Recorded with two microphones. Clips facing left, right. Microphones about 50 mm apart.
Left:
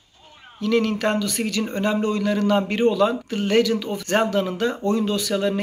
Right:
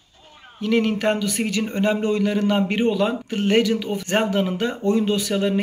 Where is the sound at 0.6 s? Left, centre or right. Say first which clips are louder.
Even; right.